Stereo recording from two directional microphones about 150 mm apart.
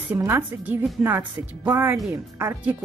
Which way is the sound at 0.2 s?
15° right (ahead or behind).